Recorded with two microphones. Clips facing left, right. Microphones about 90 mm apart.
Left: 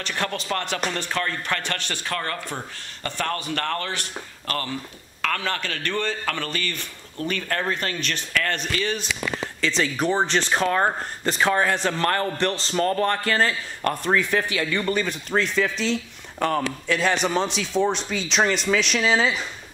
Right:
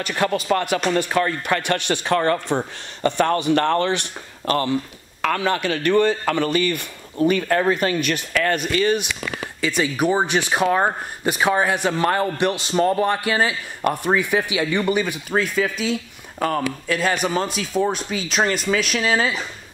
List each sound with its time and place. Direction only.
0.0 s speech: 10° right (ahead or behind)